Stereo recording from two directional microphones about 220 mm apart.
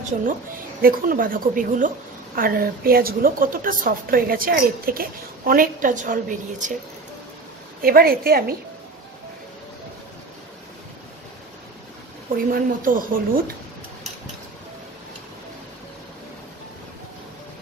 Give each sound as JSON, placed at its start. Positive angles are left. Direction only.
{"t": 0.8, "sound": "a woman's voice", "side_deg": -40}
{"t": 7.8, "sound": "a woman's voice", "side_deg": -40}
{"t": 12.4, "sound": "a woman's voice", "side_deg": -40}